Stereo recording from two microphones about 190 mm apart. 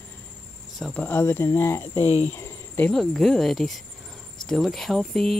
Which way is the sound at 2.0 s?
35° left (ahead or behind).